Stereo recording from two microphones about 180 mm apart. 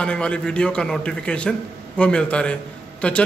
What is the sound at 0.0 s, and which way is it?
A man's voice, 5° left (ahead or behind).